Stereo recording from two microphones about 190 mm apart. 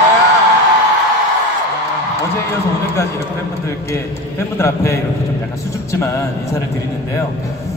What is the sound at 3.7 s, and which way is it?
A man's voice, 15° left (ahead or behind).